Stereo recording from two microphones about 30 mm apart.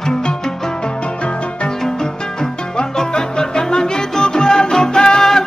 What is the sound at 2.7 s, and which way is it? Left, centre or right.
Music, left.